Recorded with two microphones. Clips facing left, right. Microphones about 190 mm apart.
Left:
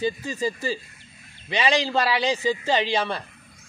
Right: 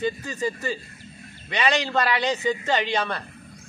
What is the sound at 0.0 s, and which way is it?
Speech, 30° left (ahead or behind).